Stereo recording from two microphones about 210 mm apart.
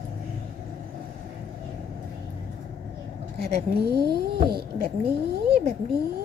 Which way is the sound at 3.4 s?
50° right (ahead or behind).